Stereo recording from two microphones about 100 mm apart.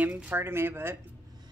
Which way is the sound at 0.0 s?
20° right (ahead or behind).